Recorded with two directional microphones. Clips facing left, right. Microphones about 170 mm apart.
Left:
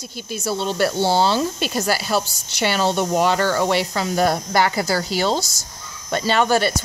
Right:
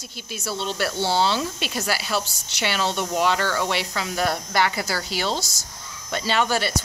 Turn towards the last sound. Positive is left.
turn(degrees=50)  # may be behind; listen again after turning